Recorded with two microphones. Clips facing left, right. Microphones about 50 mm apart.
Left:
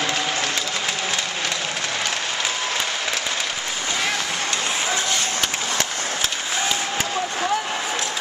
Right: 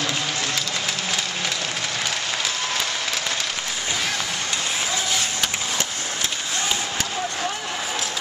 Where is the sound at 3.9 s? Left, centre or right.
Centre.